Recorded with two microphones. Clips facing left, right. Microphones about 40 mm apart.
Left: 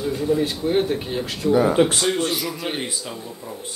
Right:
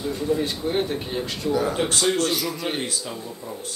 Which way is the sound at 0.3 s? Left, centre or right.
Centre.